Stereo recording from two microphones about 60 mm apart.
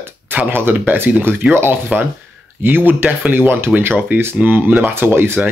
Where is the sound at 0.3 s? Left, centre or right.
Right.